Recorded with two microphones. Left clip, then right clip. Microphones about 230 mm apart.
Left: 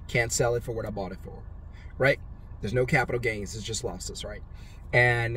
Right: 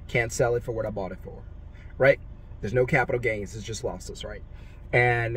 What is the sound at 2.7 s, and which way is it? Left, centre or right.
Speech, centre.